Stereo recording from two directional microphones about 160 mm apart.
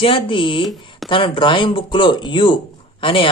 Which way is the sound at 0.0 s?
30° left (ahead or behind).